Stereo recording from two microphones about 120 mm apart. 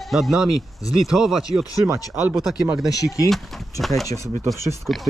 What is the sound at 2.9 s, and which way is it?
Speech, 30° left (ahead or behind).